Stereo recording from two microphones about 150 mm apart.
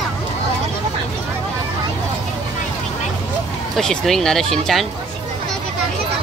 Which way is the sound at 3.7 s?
Centre (ahead or behind).